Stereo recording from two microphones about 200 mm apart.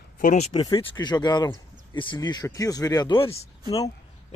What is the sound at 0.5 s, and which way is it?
Speech, 20° left (ahead or behind).